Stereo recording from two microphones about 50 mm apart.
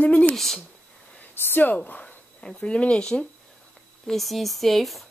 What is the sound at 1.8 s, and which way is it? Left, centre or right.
Speech, left.